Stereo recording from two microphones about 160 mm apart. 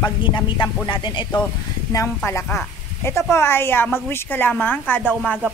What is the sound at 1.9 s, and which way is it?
A woman's voice, 15° left (ahead or behind).